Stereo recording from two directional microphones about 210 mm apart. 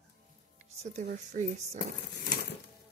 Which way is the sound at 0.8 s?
35° right (ahead or behind).